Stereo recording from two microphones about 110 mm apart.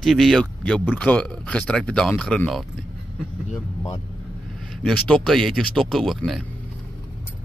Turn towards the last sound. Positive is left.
turn(degrees=0)  # may be behind; listen again after turning